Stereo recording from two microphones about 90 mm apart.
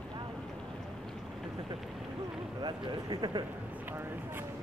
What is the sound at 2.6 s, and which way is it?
Speech, 55° right (ahead or behind).